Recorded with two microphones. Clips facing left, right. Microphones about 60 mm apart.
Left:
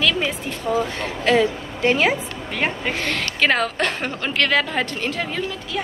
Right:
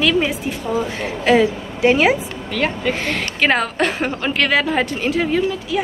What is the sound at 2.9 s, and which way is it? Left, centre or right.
A woman's voice, centre.